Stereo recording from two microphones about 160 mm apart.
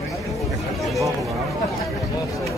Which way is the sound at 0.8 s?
Centre (ahead or behind).